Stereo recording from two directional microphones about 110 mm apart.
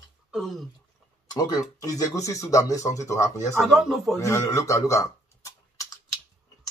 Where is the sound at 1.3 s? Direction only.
35° left (ahead or behind).